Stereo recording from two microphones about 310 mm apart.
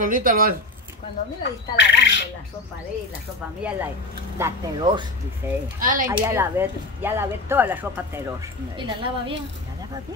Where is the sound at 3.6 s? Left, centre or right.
Centre.